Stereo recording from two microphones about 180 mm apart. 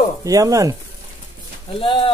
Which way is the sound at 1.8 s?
30° left (ahead or behind).